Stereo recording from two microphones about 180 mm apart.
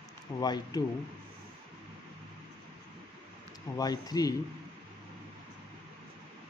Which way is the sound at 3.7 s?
20° left (ahead or behind).